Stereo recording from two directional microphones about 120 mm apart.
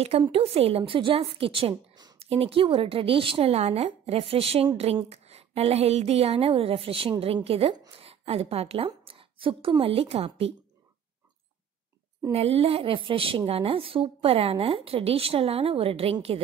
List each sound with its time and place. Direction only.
0.3 s a woman's voice: 55° right (ahead or behind)
12.3 s a woman's voice: 55° right (ahead or behind)